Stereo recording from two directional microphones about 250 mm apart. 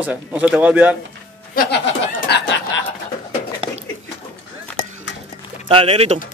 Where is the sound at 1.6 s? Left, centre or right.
Left.